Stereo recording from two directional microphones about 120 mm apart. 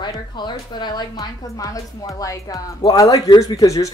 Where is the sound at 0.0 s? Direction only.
40° left (ahead or behind).